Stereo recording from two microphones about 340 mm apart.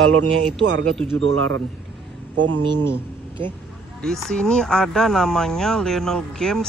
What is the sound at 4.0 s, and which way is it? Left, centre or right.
Speech, centre.